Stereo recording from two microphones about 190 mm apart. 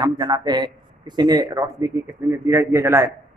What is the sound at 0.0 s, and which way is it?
A man's voice, 20° right (ahead or behind).